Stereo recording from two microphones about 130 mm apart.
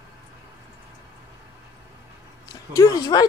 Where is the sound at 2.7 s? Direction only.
25° left (ahead or behind).